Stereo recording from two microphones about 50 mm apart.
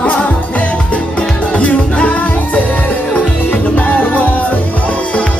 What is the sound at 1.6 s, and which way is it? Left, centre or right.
Music, left.